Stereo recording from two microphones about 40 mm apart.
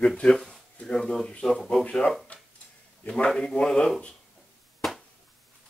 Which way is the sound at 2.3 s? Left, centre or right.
Left.